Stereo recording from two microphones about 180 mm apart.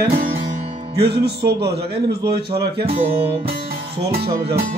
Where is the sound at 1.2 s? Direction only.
65° right (ahead or behind).